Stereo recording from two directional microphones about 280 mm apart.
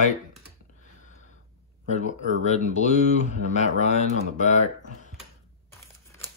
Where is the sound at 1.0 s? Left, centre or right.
Left.